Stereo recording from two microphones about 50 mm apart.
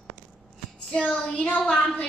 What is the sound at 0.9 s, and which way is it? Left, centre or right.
Child singing, centre.